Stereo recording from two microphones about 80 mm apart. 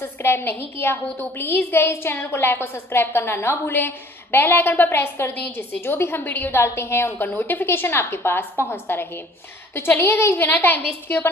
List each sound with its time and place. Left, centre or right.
0.0 s a woman's voice: left